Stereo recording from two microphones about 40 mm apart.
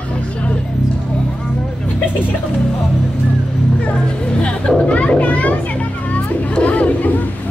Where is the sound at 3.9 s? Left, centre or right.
Left.